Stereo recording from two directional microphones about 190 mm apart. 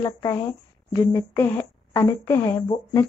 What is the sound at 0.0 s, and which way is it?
A woman's voice, 15° left (ahead or behind).